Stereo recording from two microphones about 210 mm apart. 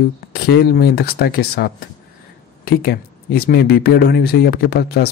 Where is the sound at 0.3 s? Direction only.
45° left (ahead or behind).